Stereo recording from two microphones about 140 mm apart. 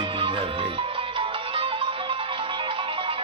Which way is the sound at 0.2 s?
40° right (ahead or behind).